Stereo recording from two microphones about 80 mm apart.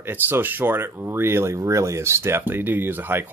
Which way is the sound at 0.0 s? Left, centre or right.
Right.